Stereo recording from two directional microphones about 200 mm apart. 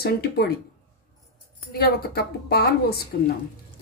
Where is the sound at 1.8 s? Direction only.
50° left (ahead or behind).